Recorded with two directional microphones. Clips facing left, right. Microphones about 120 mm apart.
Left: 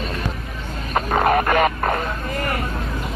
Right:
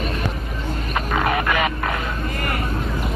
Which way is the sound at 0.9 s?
40° left (ahead or behind).